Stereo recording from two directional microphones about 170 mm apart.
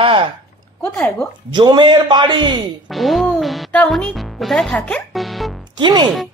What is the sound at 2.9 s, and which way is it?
Speech, centre (ahead or behind).